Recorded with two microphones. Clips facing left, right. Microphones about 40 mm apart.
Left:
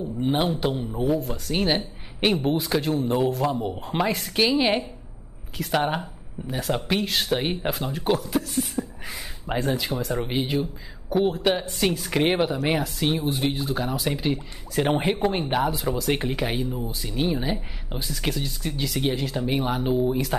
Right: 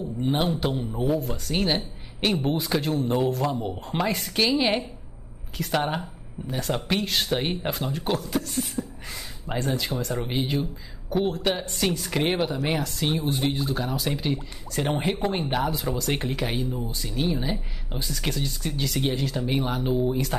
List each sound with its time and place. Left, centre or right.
0.2 s speech: centre
1.8 s a sound: centre
2.4 s speech: centre